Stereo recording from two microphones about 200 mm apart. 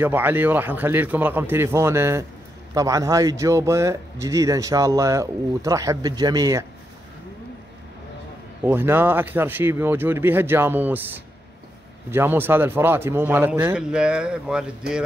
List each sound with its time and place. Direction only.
0.0 s speech: 10° right (ahead or behind)
8.6 s speech: 10° right (ahead or behind)